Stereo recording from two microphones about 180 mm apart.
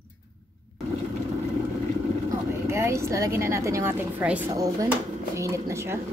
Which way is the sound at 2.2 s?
15° right (ahead or behind).